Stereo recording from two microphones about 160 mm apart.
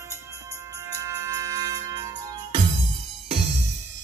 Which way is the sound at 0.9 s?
20° right (ahead or behind).